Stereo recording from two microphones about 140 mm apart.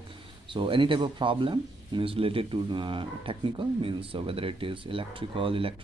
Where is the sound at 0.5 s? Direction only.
35° right (ahead or behind).